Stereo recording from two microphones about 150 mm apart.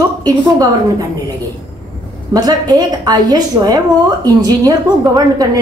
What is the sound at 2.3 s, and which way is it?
A woman's voice, 25° right (ahead or behind).